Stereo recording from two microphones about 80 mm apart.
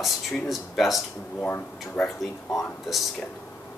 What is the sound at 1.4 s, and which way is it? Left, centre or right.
Speech, left.